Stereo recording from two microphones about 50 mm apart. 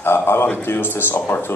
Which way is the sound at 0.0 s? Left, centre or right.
Left.